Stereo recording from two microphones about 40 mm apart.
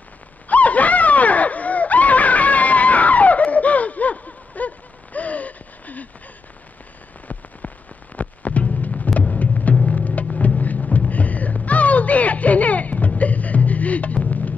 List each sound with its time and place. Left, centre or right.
0.5 s a sound: left
7.3 s rain on surface: left
8.2 s music: left